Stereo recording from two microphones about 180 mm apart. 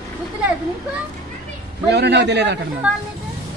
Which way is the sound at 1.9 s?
70° right (ahead or behind).